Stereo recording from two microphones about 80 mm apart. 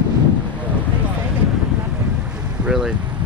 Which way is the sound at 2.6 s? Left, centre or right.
Centre.